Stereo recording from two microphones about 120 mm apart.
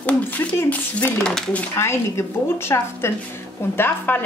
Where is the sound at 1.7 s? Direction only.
20° left (ahead or behind).